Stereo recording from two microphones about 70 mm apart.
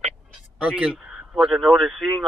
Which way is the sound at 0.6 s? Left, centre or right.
Centre.